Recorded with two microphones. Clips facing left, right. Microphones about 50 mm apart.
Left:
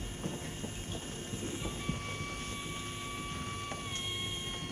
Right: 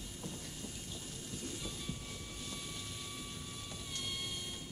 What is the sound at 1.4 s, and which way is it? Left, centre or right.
Train, left.